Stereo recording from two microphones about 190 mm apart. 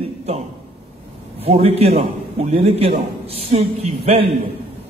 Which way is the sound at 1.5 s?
30° right (ahead or behind).